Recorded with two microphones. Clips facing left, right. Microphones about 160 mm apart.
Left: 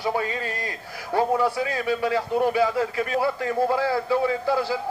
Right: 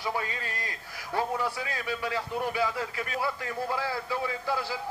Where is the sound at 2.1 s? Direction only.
35° left (ahead or behind).